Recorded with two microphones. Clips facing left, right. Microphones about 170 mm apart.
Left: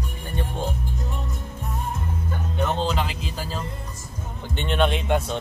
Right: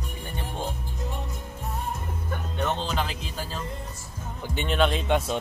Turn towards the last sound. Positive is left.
turn(degrees=0)  # may be behind; listen again after turning